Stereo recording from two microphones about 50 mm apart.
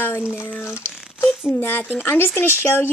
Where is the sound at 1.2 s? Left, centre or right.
Left.